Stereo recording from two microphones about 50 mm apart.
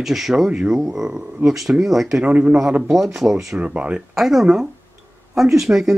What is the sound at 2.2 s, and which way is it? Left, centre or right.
Speech, right.